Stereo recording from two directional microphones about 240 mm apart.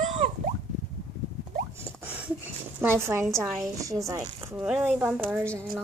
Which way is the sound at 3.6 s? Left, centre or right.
Centre.